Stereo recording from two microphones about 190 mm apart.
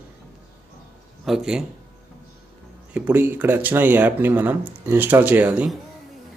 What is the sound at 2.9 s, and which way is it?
Speech, 10° right (ahead or behind).